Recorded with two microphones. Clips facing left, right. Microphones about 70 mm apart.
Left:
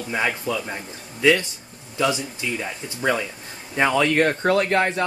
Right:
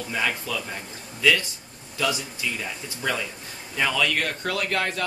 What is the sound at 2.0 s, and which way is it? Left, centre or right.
Speech, left.